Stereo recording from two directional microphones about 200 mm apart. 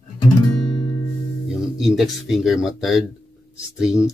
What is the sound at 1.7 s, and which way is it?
Speech, centre (ahead or behind).